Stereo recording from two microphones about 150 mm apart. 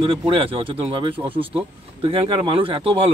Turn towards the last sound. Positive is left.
turn(degrees=-35)  # may be behind; listen again after turning